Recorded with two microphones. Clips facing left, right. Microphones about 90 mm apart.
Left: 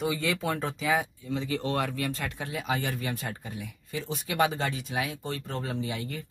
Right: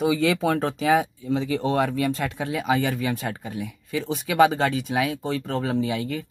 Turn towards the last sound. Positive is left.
turn(degrees=-90)